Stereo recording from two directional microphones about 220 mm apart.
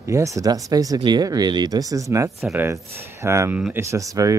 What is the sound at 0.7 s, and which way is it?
Speech, 15° right (ahead or behind).